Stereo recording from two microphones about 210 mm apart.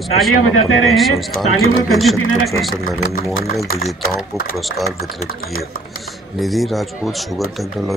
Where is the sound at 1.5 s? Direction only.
80° left.